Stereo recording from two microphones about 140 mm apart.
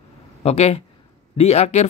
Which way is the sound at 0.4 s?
45° left (ahead or behind).